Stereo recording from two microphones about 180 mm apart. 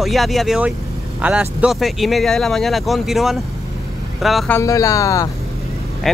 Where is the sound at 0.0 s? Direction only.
Centre (ahead or behind).